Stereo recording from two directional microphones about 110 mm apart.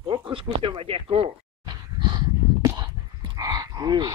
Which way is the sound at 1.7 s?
40° right (ahead or behind).